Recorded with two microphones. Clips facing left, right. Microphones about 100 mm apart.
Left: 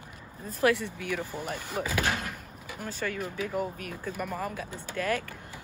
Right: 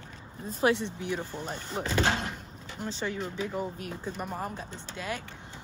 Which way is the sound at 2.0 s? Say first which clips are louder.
Right 2 dB; 25° right (ahead or behind).